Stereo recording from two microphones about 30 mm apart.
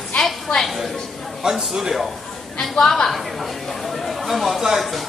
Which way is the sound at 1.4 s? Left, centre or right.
Centre.